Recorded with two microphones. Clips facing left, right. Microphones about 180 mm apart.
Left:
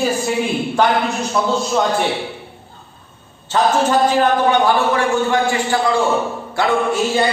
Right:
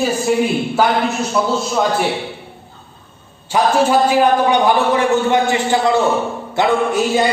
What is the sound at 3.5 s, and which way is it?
A man's voice, 10° right (ahead or behind).